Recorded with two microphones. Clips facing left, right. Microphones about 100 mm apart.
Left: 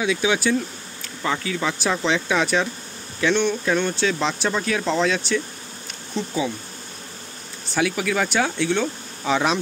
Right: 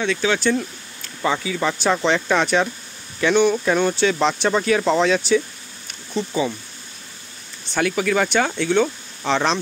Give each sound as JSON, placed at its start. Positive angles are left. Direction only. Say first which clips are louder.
{"t": 0.0, "sound": "speech", "louder": "right 1 dB", "side_deg": 10}
{"t": 7.7, "sound": "speech", "louder": "right 2 dB", "side_deg": 0}